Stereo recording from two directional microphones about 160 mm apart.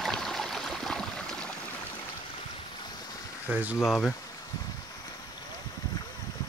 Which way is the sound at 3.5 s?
10° right (ahead or behind).